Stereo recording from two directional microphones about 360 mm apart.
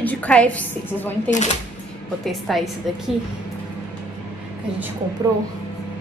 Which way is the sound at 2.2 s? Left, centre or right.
Centre.